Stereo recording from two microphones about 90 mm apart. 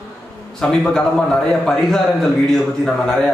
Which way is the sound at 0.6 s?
10° left (ahead or behind).